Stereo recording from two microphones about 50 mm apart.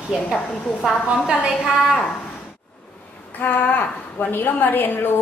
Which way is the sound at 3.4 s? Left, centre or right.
Left.